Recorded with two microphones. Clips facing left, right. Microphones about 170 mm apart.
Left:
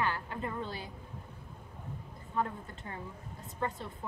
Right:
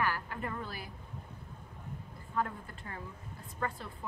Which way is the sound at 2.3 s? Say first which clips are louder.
Left 1 dB; 25° left (ahead or behind).